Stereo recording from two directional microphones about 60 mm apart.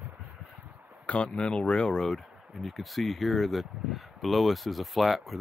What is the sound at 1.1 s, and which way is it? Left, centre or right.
Speech, centre.